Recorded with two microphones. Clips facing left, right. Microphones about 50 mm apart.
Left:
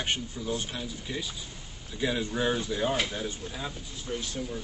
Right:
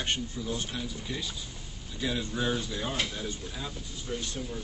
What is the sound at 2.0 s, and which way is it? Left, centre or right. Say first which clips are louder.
Speech: left 3 dB; left.